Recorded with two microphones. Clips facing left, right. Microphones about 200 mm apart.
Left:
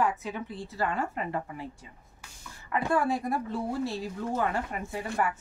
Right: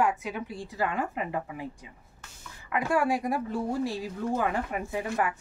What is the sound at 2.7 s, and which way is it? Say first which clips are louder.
Speech: right 1 dB; 10° right (ahead or behind).